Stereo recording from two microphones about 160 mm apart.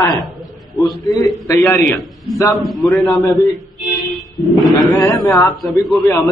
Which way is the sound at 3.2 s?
20° left (ahead or behind).